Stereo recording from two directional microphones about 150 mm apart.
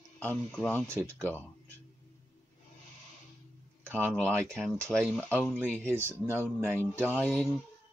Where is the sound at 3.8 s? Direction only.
15° right (ahead or behind).